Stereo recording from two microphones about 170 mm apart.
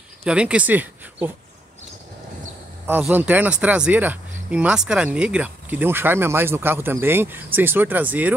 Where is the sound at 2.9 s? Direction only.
10° right (ahead or behind).